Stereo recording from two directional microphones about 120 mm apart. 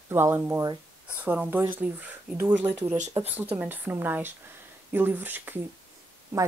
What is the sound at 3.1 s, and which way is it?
Speech, 30° right (ahead or behind).